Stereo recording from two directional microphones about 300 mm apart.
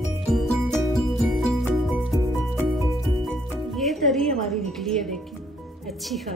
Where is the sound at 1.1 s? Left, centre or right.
Centre.